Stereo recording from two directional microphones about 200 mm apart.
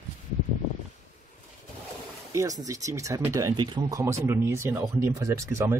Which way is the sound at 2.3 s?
15° right (ahead or behind).